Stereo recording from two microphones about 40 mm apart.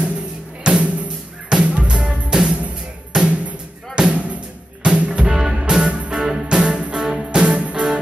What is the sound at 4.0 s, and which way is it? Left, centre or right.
Music, right.